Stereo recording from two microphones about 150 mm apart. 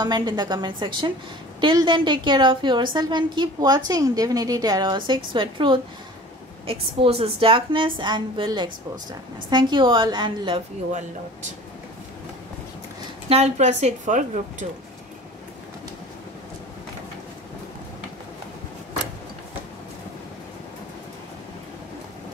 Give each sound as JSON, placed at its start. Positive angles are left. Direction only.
{"t": 0.0, "sound": "a woman's voice", "side_deg": -25}
{"t": 10.9, "sound": "a woman's voice", "side_deg": -55}
{"t": 13.3, "sound": "a woman's voice", "side_deg": -50}